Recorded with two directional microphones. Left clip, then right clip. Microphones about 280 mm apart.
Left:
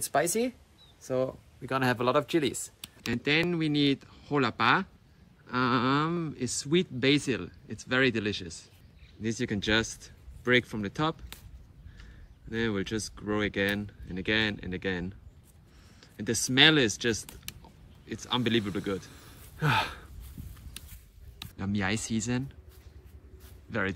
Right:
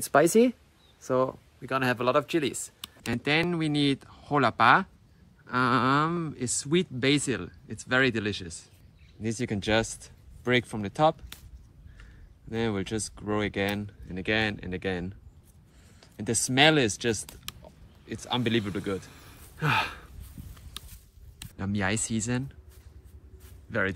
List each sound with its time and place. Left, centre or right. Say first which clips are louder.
0.0 s speech: right 7 dB; right
1.0 s speech: right 4 dB; centre
1.6 s speech: right 1 dB; centre
12.4 s speech: right 1 dB; centre
21.5 s speech: right 2 dB; centre